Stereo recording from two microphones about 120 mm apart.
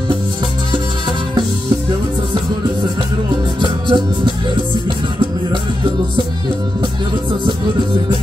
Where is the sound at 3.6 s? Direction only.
40° right (ahead or behind).